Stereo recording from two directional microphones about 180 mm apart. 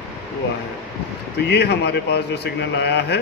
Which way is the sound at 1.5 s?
65° left (ahead or behind).